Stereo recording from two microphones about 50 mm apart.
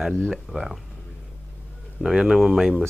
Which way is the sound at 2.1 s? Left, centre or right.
Centre.